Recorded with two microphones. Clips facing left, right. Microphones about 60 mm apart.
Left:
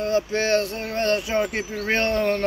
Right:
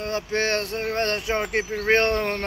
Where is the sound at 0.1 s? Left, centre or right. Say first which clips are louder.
Left 3 dB; right.